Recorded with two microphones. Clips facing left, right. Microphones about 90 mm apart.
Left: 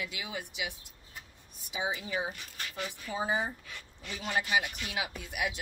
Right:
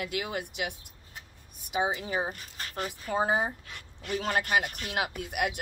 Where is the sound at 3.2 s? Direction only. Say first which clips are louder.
Right 3 dB; 60° right (ahead or behind).